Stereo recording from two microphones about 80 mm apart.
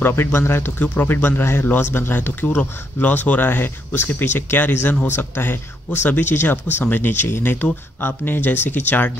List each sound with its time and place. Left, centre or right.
0.0 s speech: left